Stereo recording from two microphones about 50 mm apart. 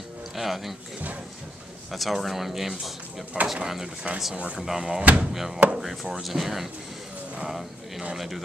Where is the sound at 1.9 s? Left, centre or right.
Centre.